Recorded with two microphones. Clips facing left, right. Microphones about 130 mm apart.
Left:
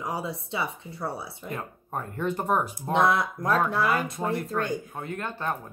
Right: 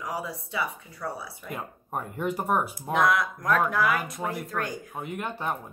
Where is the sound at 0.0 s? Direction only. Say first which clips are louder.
Left 2 dB; 25° left (ahead or behind).